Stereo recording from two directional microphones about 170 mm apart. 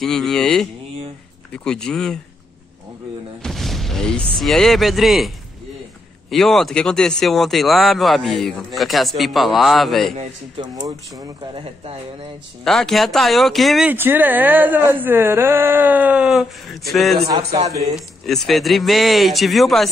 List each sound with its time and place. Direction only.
0.0 s speech: centre (ahead or behind)
3.4 s speech: centre (ahead or behind)
6.3 s speech: centre (ahead or behind)
10.6 s speech: 25° right (ahead or behind)
12.6 s speech: 5° left (ahead or behind)
13.9 s speech: 10° right (ahead or behind)